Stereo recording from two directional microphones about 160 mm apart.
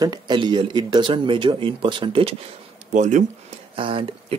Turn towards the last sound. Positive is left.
turn(degrees=-35)  # may be behind; listen again after turning